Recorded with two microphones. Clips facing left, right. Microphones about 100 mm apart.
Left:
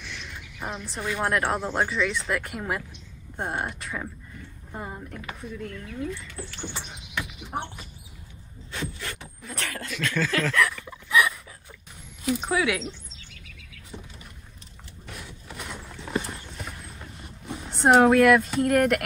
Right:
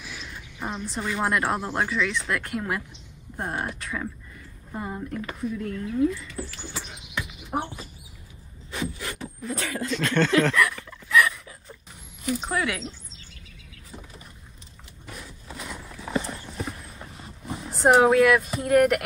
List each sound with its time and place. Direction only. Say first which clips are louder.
0.0 s a woman's voice: even; 5° right (ahead or behind)
7.5 s speech: right 4 dB; 15° right (ahead or behind)
8.7 s beatboxing: right 3 dB; 5° right (ahead or behind)
9.6 s speech: right 4 dB; 20° right (ahead or behind)
9.9 s speech: right 5 dB; centre (ahead or behind)
10.9 s dog: right 1 dB; 10° left (ahead or behind)
12.3 s speech: left 2 dB; 5° left (ahead or behind)
17.6 s speech: even; centre (ahead or behind)